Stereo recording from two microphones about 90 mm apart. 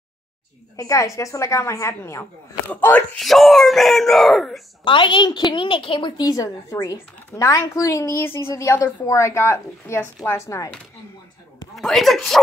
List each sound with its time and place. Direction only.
0.7 s a woman's voice: 35° left (ahead or behind)
2.7 s speech: 20° left (ahead or behind)
3.2 s speech: centre (ahead or behind)
4.8 s a woman's voice: 65° left (ahead or behind)
6.2 s a woman's voice: 40° left (ahead or behind)
11.7 s speech: centre (ahead or behind)